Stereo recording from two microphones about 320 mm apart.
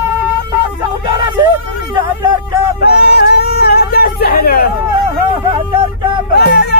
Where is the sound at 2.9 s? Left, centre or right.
Left.